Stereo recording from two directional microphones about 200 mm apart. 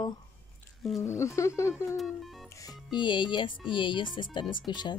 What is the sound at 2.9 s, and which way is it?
Speech, 25° left (ahead or behind).